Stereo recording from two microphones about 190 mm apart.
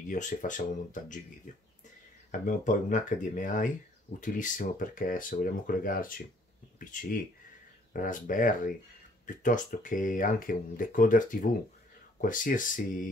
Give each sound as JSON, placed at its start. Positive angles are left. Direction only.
{"t": 0.1, "sound": "speech", "side_deg": 40}
{"t": 2.3, "sound": "speech", "side_deg": 40}